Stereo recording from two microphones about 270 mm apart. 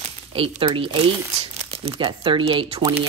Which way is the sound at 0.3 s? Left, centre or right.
Centre.